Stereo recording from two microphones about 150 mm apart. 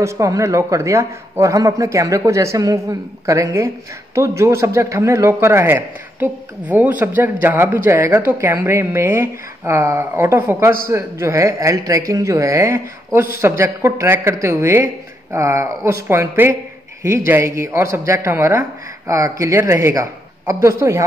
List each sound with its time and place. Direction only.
0.0 s speech: 20° right (ahead or behind)